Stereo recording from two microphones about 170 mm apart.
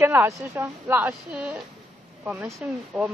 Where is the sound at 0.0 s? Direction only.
15° right (ahead or behind).